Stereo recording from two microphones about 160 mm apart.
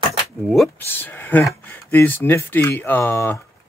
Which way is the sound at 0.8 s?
15° left (ahead or behind).